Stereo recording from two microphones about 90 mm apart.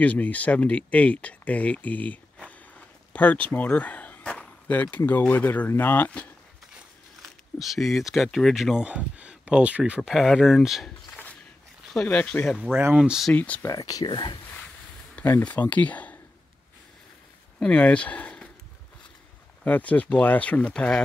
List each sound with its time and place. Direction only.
0.0 s speech: 15° left (ahead or behind)
3.1 s a sound: 15° left (ahead or behind)
4.9 s speech: 20° left (ahead or behind)
7.2 s speech: centre (ahead or behind)
10.0 s speech: 5° right (ahead or behind)
11.1 s a sound: 20° left (ahead or behind)
11.9 s speech: 15° left (ahead or behind)
12.9 s speech: 10° right (ahead or behind)
13.3 s speech: 20° left (ahead or behind)
13.7 s speech: 40° left (ahead or behind)
15.4 s speech: 15° left (ahead or behind)
17.6 s speech: 15° left (ahead or behind)
19.6 s speech: 15° left (ahead or behind)